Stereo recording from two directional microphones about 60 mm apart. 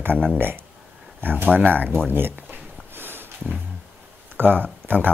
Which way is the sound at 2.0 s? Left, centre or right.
Right.